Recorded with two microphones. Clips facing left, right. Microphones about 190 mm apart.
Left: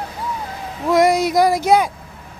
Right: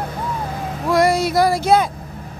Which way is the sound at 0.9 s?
20° left (ahead or behind).